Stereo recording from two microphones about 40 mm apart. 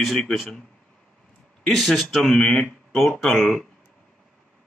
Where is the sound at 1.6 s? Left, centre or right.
Centre.